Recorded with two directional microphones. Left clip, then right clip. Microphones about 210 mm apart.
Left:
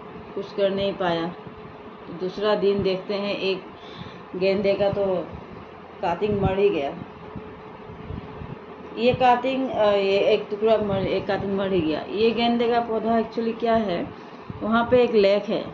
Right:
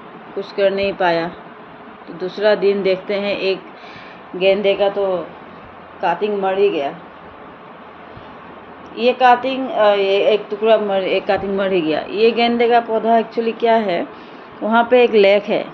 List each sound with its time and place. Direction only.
0.4 s a woman's voice: 5° right (ahead or behind)
5.9 s a woman's voice: 15° right (ahead or behind)
8.9 s a woman's voice: 15° right (ahead or behind)